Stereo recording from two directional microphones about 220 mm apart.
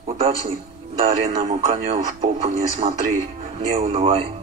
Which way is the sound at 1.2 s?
35° right (ahead or behind).